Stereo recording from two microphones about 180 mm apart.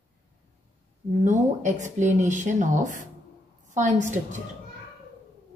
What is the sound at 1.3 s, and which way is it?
A woman's voice, 40° right (ahead or behind).